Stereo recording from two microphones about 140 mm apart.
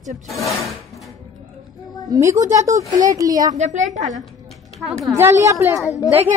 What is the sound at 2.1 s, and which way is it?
A woman's voice, 20° right (ahead or behind).